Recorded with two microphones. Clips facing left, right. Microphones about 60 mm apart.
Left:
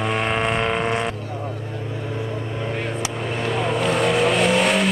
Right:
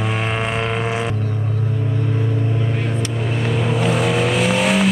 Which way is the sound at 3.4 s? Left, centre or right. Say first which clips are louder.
Right 1 dB; centre.